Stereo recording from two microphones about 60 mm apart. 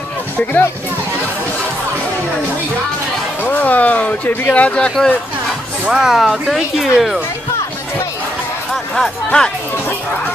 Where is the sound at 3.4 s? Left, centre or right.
Left.